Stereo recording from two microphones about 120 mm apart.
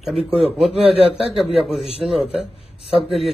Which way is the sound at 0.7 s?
55° right (ahead or behind).